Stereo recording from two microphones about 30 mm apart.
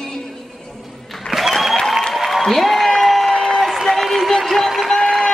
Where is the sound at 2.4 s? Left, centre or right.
Centre.